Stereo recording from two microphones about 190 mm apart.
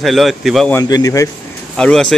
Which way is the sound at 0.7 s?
20° left (ahead or behind).